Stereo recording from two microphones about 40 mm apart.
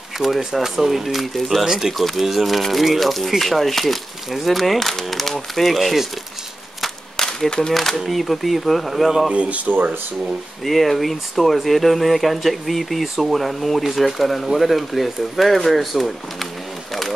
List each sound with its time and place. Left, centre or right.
0.2 s speech: centre
6.8 s a sound: centre
7.9 s speech: centre
9.3 s speech: right
9.7 s speech: right
10.6 s speech: centre